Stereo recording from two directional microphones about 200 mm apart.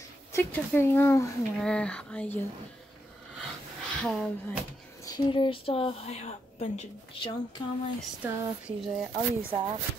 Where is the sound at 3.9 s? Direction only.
5° left (ahead or behind).